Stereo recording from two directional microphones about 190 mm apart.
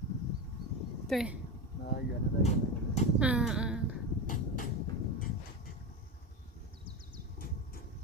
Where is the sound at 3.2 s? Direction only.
5° right (ahead or behind).